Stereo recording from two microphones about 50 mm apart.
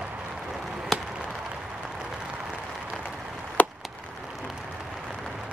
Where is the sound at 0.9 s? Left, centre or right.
Centre.